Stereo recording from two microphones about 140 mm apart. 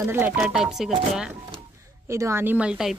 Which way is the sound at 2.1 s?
20° right (ahead or behind).